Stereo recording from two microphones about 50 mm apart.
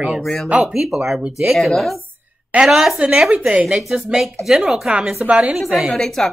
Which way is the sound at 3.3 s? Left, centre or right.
Right.